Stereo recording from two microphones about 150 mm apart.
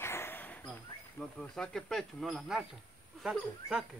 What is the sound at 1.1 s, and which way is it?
Insect, 5° left (ahead or behind).